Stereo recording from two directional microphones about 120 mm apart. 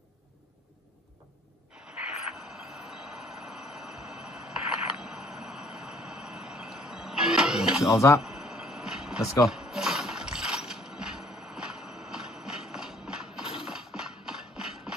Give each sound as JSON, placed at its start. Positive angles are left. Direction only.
{"t": 2.0, "sound": "train", "side_deg": -5}
{"t": 7.8, "sound": "speech", "side_deg": 25}
{"t": 8.2, "sound": "a sound", "side_deg": -5}